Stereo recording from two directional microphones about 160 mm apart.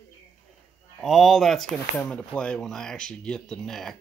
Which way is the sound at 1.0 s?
Centre (ahead or behind).